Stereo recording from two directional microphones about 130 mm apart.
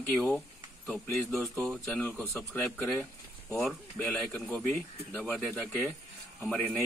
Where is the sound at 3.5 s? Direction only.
Centre (ahead or behind).